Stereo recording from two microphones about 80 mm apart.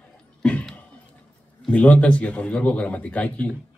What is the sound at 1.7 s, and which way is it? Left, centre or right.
Speech, centre.